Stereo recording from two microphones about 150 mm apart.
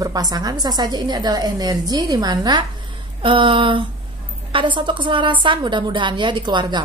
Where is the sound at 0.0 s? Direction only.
25° right (ahead or behind).